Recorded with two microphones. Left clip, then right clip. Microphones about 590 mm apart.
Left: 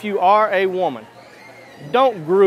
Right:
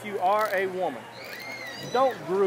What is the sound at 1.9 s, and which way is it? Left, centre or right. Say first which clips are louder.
Speech: left 9 dB; left.